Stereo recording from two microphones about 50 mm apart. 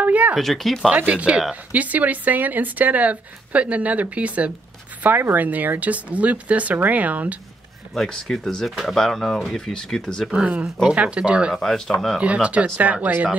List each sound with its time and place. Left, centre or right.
0.0 s a sound: right
0.4 s speech: centre
1.0 s speech: right
1.7 s speech: right
5.0 s speech: right
7.9 s speech: centre
10.3 s speech: right
11.5 s speech: centre
12.2 s speech: right